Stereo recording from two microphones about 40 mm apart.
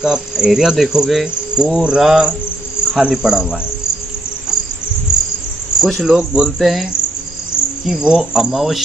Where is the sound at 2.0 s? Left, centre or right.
Centre.